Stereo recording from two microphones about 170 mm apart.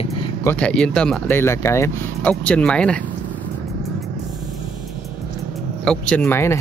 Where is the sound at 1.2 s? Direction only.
15° left (ahead or behind).